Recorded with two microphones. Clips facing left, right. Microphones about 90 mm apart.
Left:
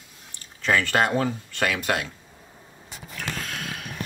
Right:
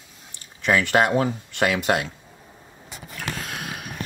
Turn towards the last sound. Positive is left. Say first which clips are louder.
# right 1 dB
turn(degrees=-15)  # may be behind; listen again after turning